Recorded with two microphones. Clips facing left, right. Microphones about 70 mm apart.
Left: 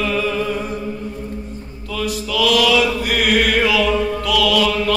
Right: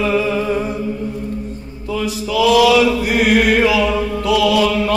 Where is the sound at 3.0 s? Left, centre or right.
Right.